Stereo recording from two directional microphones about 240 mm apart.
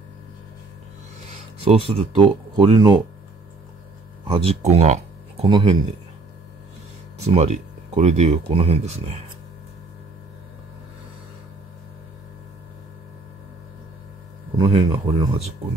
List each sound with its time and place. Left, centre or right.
1.6 s speech: right
4.3 s speech: right
7.2 s speech: right
14.6 s speech: centre